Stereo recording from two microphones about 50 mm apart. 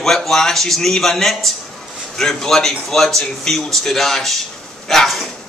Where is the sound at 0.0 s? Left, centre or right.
Centre.